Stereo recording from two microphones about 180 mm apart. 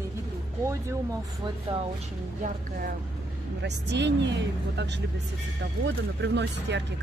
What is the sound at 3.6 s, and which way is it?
Speech, 75° right (ahead or behind).